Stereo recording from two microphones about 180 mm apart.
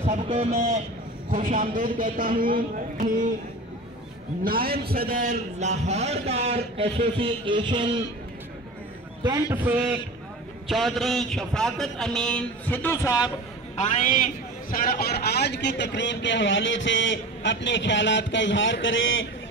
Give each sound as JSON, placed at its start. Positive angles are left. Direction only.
{"t": 0.0, "sound": "a man's voice", "side_deg": -35}
{"t": 4.5, "sound": "a man's voice", "side_deg": -55}
{"t": 9.2, "sound": "a man's voice", "side_deg": -20}
{"t": 9.7, "sound": "a man's voice", "side_deg": -5}
{"t": 13.7, "sound": "a man's voice", "side_deg": 40}